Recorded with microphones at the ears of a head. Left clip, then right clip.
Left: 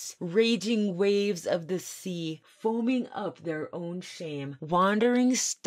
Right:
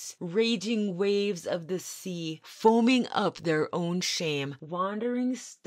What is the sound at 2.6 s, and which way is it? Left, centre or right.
Speech, right.